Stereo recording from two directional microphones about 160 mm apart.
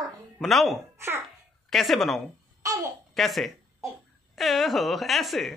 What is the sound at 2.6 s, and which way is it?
Babbling, 20° right (ahead or behind).